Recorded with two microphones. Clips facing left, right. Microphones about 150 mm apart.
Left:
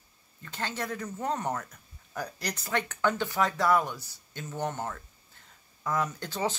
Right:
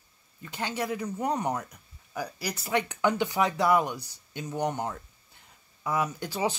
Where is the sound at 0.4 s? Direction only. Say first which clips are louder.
Right 3 dB; 15° right (ahead or behind).